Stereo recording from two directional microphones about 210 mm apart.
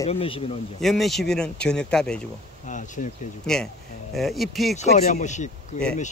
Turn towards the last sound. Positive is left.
turn(degrees=35)  # may be behind; listen again after turning